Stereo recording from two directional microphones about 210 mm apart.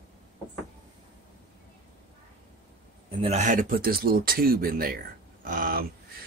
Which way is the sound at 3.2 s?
30° right (ahead or behind).